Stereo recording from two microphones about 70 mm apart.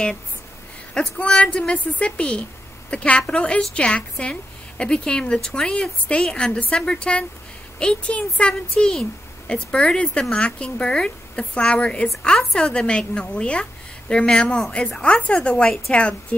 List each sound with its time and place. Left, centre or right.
0.9 s a woman's voice: centre